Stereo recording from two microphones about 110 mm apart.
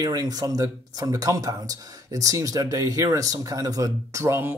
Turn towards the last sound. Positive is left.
turn(degrees=-20)  # may be behind; listen again after turning